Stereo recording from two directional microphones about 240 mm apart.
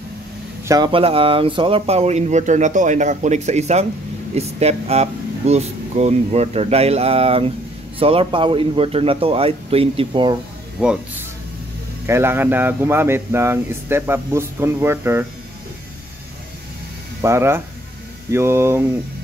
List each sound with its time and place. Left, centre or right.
0.7 s speech: centre
10.8 s speech: centre
17.2 s speech: centre